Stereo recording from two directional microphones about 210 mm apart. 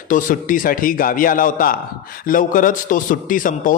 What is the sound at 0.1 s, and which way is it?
A man's voice, 40° left (ahead or behind).